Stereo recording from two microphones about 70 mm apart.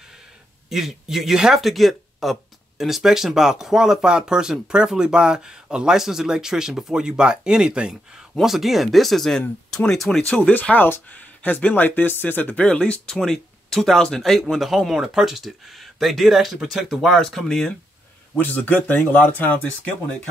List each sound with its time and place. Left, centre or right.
0.7 s speech: centre
8.4 s speech: centre
10.3 s speech: centre
13.1 s speech: centre
18.3 s speech: left